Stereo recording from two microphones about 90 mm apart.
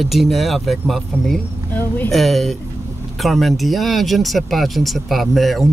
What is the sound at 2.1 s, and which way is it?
Speech, centre (ahead or behind).